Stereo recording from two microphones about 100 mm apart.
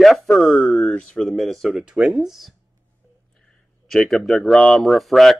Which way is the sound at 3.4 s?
5° left (ahead or behind).